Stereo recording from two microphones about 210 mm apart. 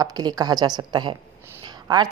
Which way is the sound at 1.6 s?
20° right (ahead or behind).